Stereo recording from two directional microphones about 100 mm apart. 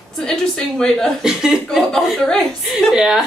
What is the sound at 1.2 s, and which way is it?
Speech, 5° right (ahead or behind).